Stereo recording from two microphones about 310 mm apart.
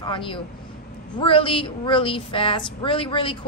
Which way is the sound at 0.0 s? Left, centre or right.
Centre.